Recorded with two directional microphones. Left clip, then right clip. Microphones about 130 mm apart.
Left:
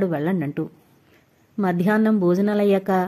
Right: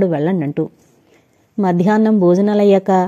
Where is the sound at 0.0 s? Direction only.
30° right (ahead or behind).